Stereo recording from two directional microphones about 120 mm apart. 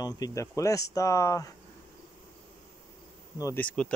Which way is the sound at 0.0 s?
30° left (ahead or behind).